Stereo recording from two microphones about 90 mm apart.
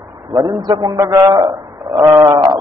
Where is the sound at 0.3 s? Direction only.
45° right (ahead or behind).